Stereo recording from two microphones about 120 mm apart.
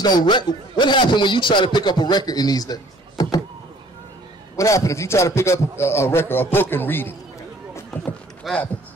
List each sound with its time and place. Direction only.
0.0 s a man's voice: 35° left (ahead or behind)
4.6 s a man's voice: 25° left (ahead or behind)
8.5 s speech: centre (ahead or behind)